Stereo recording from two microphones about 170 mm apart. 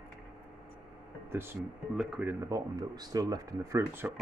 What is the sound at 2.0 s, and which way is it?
Speech, 5° right (ahead or behind).